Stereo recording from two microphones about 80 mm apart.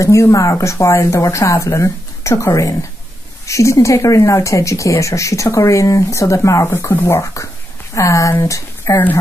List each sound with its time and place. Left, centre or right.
0.0 s speech: left
7.4 s speech: left